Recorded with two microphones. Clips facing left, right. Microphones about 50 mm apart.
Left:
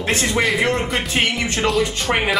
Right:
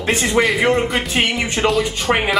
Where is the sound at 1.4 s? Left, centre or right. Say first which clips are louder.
Right 2 dB; centre.